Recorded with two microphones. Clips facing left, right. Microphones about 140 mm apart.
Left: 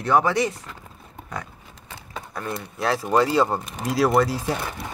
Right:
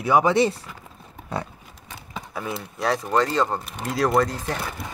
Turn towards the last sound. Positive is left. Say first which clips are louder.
# left 1 dB
turn(degrees=10)  # may be behind; listen again after turning